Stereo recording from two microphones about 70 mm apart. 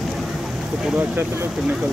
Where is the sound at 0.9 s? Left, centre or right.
Right.